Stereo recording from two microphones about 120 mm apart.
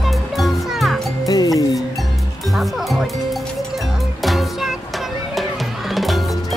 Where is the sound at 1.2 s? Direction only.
30° left (ahead or behind).